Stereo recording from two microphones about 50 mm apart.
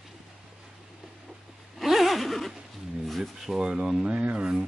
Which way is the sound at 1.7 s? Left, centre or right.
Centre.